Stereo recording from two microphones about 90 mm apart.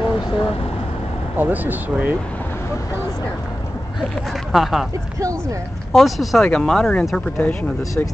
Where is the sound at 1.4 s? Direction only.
20° right (ahead or behind).